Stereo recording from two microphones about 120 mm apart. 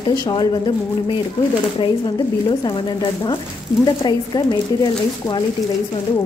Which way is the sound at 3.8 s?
35° left (ahead or behind).